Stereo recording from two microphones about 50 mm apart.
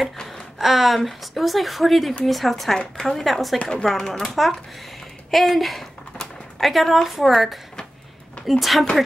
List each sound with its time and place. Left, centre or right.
0.6 s speech: centre